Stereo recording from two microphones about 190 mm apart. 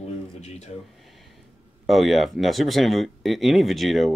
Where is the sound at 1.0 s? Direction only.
Centre (ahead or behind).